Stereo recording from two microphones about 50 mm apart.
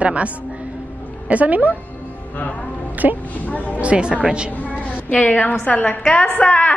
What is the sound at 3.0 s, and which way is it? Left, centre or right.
Speech, right.